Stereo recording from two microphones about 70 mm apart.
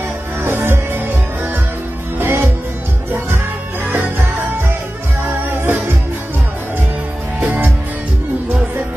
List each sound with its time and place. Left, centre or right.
0.4 s music: right
3.9 s music: right
7.3 s music: right